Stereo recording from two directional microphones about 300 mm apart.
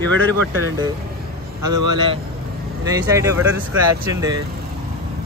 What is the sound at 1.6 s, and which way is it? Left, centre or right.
Speech, centre.